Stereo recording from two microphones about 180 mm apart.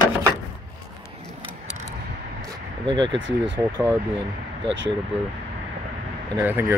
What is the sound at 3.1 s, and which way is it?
Speech, 90° right.